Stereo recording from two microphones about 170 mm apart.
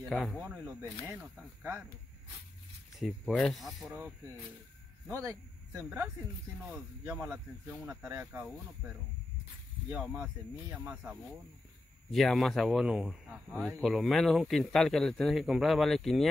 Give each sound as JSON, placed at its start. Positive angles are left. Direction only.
{"t": 0.1, "sound": "a man's voice", "side_deg": 0}
{"t": 3.0, "sound": "a man's voice", "side_deg": 0}
{"t": 5.2, "sound": "speech", "side_deg": -20}
{"t": 12.1, "sound": "a man's voice", "side_deg": 0}